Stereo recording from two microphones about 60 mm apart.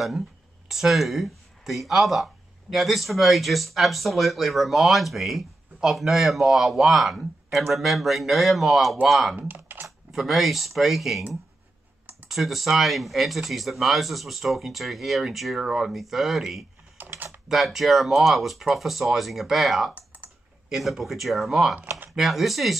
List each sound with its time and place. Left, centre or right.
0.7 s speech: centre
9.4 s typing: right
9.8 s speech: centre
12.3 s speech: centre
17.0 s typing: right
17.5 s speech: centre
19.9 s typing: right
20.7 s speech: centre